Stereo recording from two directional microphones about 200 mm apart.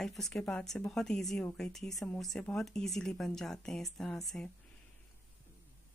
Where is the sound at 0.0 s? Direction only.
Centre (ahead or behind).